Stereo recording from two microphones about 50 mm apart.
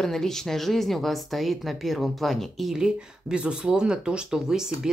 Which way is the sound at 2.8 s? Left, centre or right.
Centre.